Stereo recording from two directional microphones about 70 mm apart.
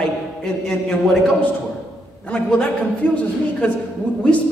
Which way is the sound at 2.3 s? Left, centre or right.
Centre.